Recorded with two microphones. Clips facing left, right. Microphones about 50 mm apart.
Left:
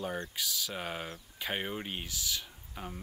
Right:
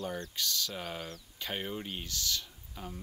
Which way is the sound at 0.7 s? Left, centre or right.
Left.